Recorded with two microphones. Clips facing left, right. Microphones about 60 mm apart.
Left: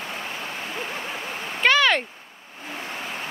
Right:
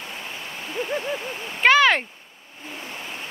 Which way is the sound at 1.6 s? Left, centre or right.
Centre.